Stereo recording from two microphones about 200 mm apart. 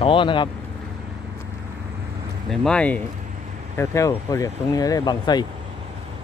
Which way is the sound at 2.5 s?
5° left (ahead or behind).